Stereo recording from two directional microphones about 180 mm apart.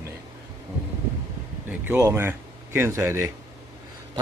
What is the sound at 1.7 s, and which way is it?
Speech, 15° right (ahead or behind).